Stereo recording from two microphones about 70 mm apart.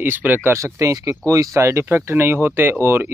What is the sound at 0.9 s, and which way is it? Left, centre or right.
Speech, right.